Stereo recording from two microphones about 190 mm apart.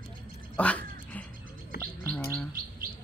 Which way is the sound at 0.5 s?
5° left (ahead or behind).